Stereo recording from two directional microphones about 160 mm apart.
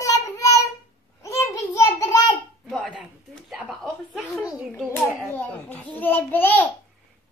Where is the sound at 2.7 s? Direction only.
Centre (ahead or behind).